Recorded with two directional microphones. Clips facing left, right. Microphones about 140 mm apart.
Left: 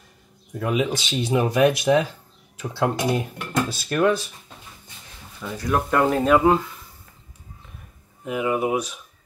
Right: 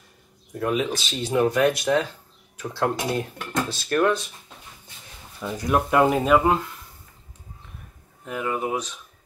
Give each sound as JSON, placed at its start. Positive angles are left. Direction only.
{"t": 0.6, "sound": "speech", "side_deg": 10}
{"t": 5.4, "sound": "speech", "side_deg": -15}
{"t": 8.3, "sound": "speech", "side_deg": 15}